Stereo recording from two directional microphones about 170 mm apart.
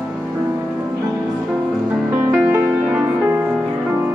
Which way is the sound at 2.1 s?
5° right (ahead or behind).